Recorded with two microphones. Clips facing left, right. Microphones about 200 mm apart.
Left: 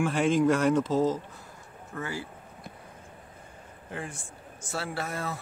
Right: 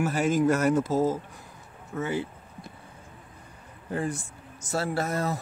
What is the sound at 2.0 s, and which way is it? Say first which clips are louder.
Speech: right 6 dB; 20° right (ahead or behind).